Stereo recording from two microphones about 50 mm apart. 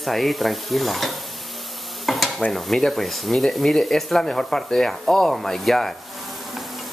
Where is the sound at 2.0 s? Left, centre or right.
Centre.